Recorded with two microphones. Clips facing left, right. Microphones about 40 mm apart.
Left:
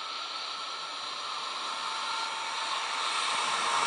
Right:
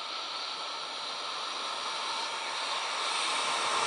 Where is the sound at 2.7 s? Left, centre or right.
Centre.